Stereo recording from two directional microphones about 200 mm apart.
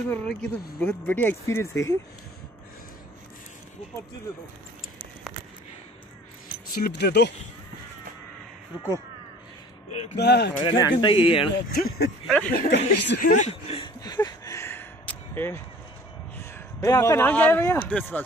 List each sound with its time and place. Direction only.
0.1 s speech: 5° left (ahead or behind)
6.7 s speech: 55° left (ahead or behind)
10.1 s speech: 55° left (ahead or behind)
10.6 s speech: 20° left (ahead or behind)
11.7 s speech: 50° left (ahead or behind)
12.5 s speech: 60° left (ahead or behind)
13.2 s speech: 40° left (ahead or behind)
14.0 s a sound: 20° left (ahead or behind)
16.5 s speech: 15° left (ahead or behind)